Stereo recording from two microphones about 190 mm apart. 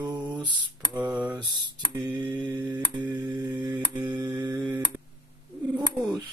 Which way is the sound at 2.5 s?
20° right (ahead or behind).